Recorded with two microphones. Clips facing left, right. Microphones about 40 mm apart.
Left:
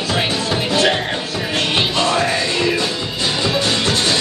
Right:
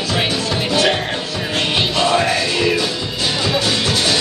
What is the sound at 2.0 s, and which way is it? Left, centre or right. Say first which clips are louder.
Music: right 3 dB; right.